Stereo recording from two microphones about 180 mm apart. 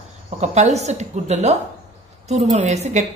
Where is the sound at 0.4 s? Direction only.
40° right (ahead or behind).